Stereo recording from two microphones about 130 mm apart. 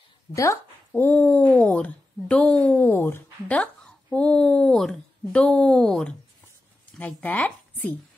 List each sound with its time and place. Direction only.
0.4 s speech: 20° left (ahead or behind)